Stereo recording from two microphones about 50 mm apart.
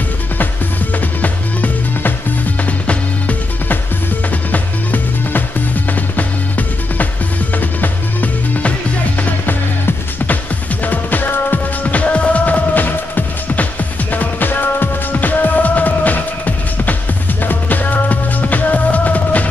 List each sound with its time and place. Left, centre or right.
1.2 s music: left
4.5 s music: left
11.8 s music: left